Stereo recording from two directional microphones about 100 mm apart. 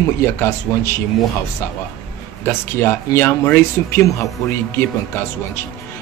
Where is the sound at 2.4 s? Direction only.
25° left (ahead or behind).